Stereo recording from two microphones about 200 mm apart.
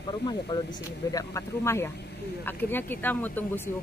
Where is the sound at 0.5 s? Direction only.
20° left (ahead or behind).